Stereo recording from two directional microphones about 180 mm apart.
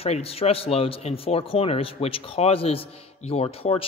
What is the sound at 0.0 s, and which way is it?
A man's voice, 35° left (ahead or behind).